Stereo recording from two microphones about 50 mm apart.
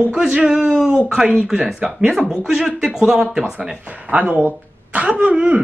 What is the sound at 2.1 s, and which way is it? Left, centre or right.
Speech, centre.